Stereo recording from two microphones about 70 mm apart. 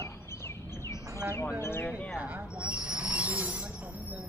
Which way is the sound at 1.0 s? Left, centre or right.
Right.